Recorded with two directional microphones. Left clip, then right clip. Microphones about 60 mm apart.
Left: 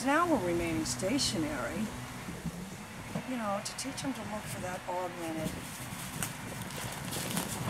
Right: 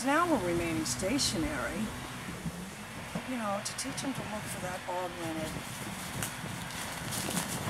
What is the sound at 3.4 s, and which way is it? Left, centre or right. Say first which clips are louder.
Speech: even; centre.